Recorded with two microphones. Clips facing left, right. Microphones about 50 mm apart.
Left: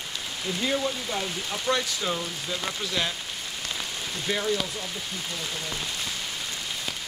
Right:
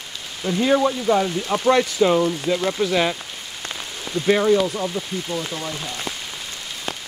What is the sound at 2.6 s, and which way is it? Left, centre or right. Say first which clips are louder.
Speech: right 8 dB; right.